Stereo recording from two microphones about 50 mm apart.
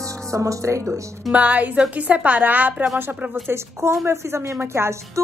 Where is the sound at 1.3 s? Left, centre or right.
Right.